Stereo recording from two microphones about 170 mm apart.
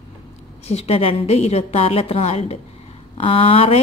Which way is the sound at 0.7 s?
35° left (ahead or behind).